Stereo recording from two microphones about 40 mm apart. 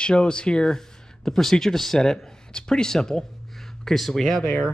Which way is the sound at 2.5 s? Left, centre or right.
Centre.